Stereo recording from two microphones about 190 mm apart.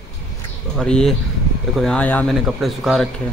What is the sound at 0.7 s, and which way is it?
Speech, 5° left (ahead or behind).